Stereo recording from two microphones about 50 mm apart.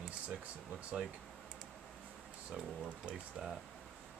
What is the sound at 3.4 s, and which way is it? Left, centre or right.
Speech, centre.